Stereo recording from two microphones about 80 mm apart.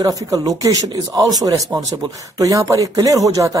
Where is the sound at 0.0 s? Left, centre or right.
Right.